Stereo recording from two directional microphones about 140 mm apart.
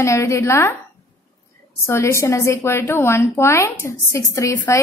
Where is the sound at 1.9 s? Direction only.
20° left (ahead or behind).